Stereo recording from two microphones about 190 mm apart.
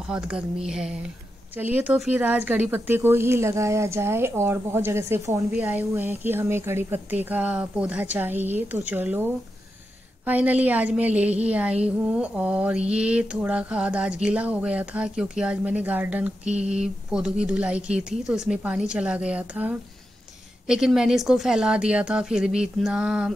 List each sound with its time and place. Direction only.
0.7 s a woman's voice: 5° right (ahead or behind)
16.4 s a sound: 35° right (ahead or behind)
16.7 s speech: 5° right (ahead or behind)